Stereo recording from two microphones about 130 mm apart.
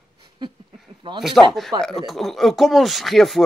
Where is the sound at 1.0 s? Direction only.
40° right (ahead or behind).